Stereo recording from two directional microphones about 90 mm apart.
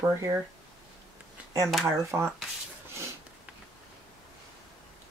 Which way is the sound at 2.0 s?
30° right (ahead or behind).